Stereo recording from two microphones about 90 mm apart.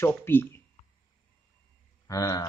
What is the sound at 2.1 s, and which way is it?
Speech, 40° left (ahead or behind).